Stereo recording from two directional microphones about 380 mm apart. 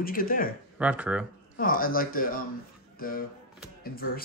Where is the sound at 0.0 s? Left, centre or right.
Left.